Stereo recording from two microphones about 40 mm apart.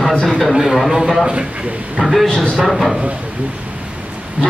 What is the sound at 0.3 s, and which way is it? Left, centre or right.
A man's voice, centre.